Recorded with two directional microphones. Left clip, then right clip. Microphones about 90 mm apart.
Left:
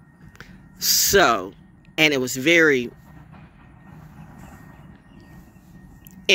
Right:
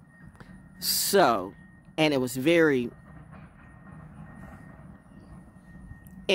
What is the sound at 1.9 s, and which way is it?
Speech, 55° right (ahead or behind).